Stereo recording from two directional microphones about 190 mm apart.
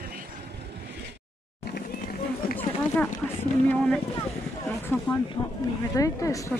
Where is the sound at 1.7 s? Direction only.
50° left (ahead or behind).